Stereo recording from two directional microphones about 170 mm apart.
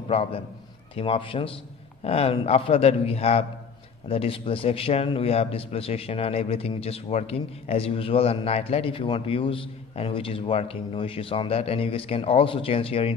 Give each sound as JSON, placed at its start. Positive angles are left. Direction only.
{"t": 0.1, "sound": "a man's voice", "side_deg": 35}